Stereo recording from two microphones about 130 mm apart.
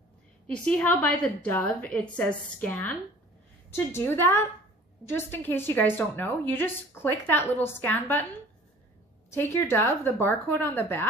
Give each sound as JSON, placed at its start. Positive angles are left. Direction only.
{"t": 0.7, "sound": "a woman's voice", "side_deg": 10}
{"t": 9.3, "sound": "a woman's voice", "side_deg": 20}